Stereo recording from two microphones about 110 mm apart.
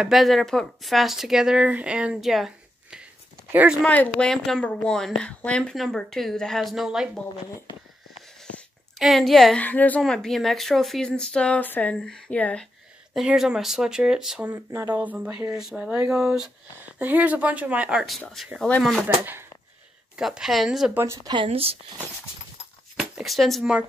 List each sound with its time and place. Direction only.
0.0 s speech: centre (ahead or behind)
3.8 s speech: 15° left (ahead or behind); by 7.1 s 5° right (ahead or behind)
8.5 s a sound: centre (ahead or behind)
9.6 s speech: 15° left (ahead or behind)
13.1 s speech: 5° right (ahead or behind)
15.0 s speech: 20° right (ahead or behind)
15.5 s speech: 5° right (ahead or behind)
16.8 s a woman's voice: 15° right (ahead or behind)
18.6 s speech: 5° left (ahead or behind)
19.0 s speech: 20° right (ahead or behind)
20.2 s speech: 5° right (ahead or behind)
20.9 s speech: 25° right (ahead or behind)
21.5 s speech: 60° right (ahead or behind)
22.9 s speech: centre (ahead or behind)